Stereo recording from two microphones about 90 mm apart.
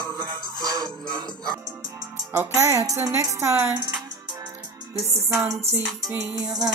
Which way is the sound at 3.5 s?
20° right (ahead or behind).